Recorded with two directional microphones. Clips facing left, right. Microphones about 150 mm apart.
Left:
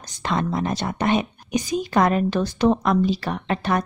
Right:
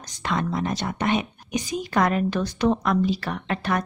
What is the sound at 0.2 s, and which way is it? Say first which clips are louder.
A woman's voice: left 2 dB; 30° left (ahead or behind).